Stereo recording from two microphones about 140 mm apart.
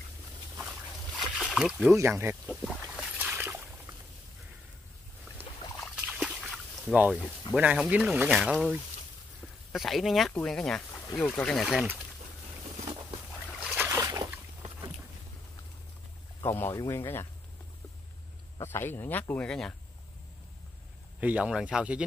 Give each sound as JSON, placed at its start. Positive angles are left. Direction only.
{"t": 1.2, "sound": "splash", "side_deg": 0}
{"t": 2.0, "sound": "speech", "side_deg": -20}
{"t": 2.4, "sound": "speech", "side_deg": 10}
{"t": 2.9, "sound": "a sound", "side_deg": -10}
{"t": 6.0, "sound": "a sound", "side_deg": -5}
{"t": 6.9, "sound": "speech", "side_deg": -5}
{"t": 13.6, "sound": "boat", "side_deg": -15}
{"t": 16.4, "sound": "speech", "side_deg": 15}
{"t": 18.6, "sound": "speech", "side_deg": 15}
{"t": 21.2, "sound": "speech", "side_deg": -10}